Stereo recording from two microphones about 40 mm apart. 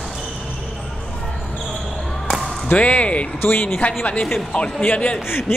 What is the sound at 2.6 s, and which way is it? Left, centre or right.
Speech, left.